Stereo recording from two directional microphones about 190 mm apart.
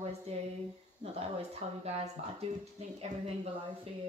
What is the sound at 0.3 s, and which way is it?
Speech, 35° right (ahead or behind).